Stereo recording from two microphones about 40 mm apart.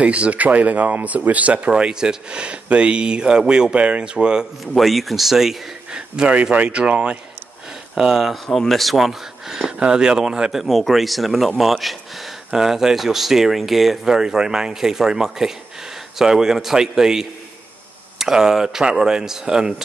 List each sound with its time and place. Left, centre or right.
0.0 s speech: right
1.7 s speech: right
4.7 s speech: centre
5.9 s speech: right
6.5 s speech: right
8.0 s speech: centre
8.5 s speech: centre
8.9 s speech: centre
9.8 s speech: right
10.6 s speech: centre
12.5 s speech: centre
14.0 s speech: centre